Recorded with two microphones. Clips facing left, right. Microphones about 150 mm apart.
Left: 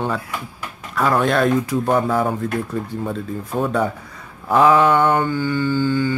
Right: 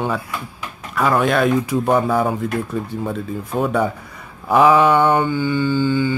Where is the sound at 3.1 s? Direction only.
5° right (ahead or behind).